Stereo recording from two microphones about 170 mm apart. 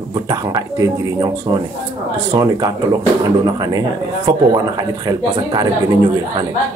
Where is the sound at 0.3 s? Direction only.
20° right (ahead or behind).